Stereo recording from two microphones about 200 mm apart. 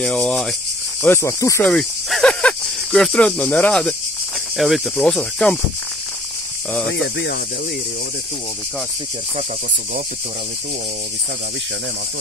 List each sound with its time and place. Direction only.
0.0 s speech: 5° left (ahead or behind)
1.0 s speech: 15° left (ahead or behind)
1.7 s snake: centre (ahead or behind)
4.6 s speech: centre (ahead or behind)
6.9 s speech: 60° left (ahead or behind)